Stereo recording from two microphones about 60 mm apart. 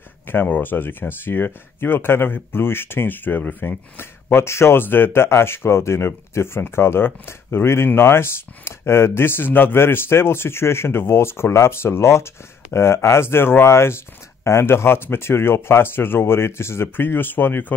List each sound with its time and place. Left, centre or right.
0.6 s speech: left